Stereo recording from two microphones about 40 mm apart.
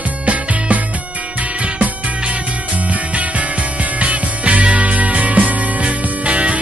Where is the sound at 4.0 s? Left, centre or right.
Right.